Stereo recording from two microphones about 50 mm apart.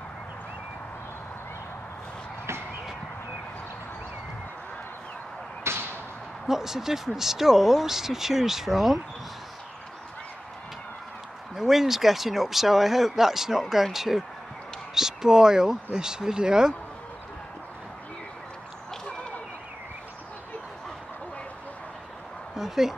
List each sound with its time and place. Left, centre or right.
5.6 s whip: right
6.4 s speech: centre
11.5 s speech: centre
22.6 s dog: centre